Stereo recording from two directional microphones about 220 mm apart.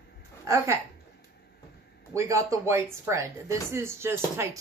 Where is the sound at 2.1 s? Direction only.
15° right (ahead or behind).